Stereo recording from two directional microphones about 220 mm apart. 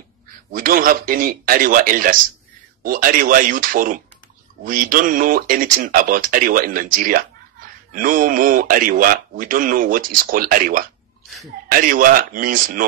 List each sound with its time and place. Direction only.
0.5 s speech: 40° right (ahead or behind)